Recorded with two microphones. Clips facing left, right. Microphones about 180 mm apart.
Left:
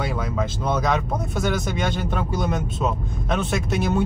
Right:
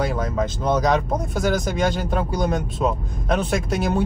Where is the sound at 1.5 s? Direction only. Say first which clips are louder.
Right 6 dB; 40° right (ahead or behind).